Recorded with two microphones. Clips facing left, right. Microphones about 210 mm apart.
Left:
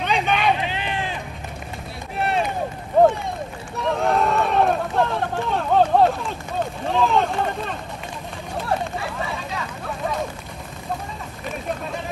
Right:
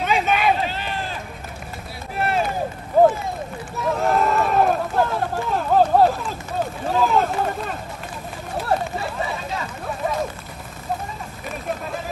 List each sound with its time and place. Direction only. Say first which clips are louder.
0.0 s vehicle: right 1 dB; 5° right (ahead or behind)
0.6 s a sound: right 1 dB; 40° right (ahead or behind)
2.1 s run: even; centre (ahead or behind)
2.9 s a sound: even; centre (ahead or behind)
3.7 s run: even; centre (ahead or behind)
6.9 s vehicle: even; 5° right (ahead or behind)